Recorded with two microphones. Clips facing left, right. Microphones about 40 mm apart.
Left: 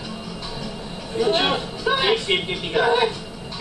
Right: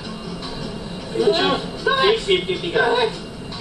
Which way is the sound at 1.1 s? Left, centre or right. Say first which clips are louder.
Right 2 dB; centre.